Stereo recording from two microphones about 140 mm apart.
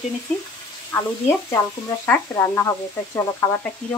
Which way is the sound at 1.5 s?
25° left (ahead or behind).